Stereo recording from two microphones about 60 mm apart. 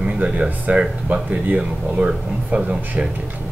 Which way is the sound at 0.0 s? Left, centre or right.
Centre.